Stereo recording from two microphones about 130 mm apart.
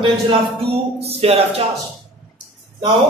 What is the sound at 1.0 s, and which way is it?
Speech, 50° right (ahead or behind).